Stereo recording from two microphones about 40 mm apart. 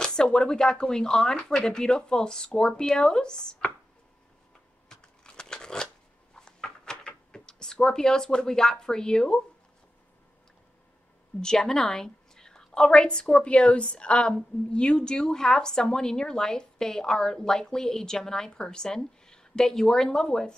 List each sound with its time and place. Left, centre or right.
0.0 s speech: left
4.8 s shuffling cards: centre
6.3 s a sound: centre
11.4 s a woman's voice: centre